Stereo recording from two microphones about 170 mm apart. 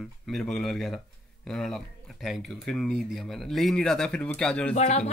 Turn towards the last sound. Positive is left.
turn(degrees=40)  # may be behind; listen again after turning